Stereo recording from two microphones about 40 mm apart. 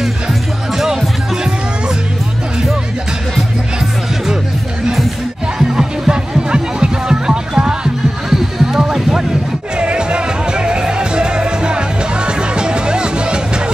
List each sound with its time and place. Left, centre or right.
0.0 s music: centre
5.6 s music: centre